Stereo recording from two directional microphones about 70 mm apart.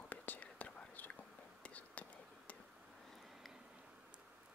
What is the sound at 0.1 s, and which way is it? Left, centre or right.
Whispering, left.